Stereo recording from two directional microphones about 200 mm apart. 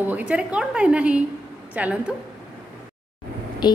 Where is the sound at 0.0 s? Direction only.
5° right (ahead or behind).